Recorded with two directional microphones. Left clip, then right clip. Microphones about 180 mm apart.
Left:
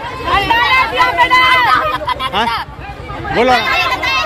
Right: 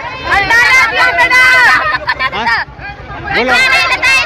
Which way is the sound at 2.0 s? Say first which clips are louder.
Right 3 dB; 10° right (ahead or behind).